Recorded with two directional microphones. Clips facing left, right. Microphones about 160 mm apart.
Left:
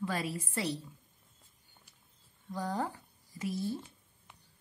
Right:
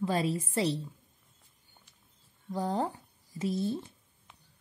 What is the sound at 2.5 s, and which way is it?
Speech, 25° right (ahead or behind).